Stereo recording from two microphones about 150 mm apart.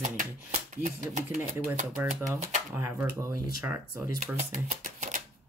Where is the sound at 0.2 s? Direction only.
55° right (ahead or behind).